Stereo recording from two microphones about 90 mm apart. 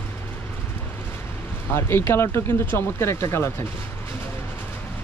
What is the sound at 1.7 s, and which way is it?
Speech, 25° left (ahead or behind).